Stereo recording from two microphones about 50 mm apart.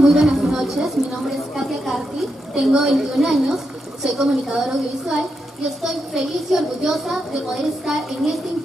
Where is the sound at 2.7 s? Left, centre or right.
Centre.